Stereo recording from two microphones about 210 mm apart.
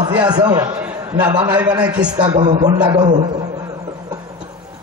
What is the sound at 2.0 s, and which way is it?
A man's voice, 20° right (ahead or behind).